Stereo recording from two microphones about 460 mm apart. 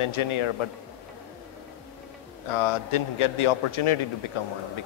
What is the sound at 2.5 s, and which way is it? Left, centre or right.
A man's voice, left.